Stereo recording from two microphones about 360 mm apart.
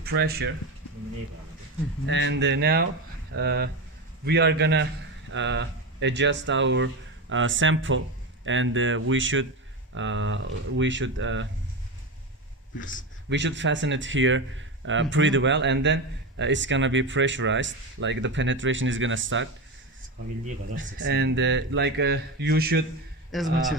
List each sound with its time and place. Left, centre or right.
0.0 s speech: right
2.0 s speech: right
13.3 s speech: right
20.7 s speech: right
23.3 s a man's voice: centre